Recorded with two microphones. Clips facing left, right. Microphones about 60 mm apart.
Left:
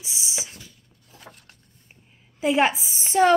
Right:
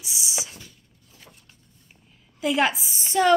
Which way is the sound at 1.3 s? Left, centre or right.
Left.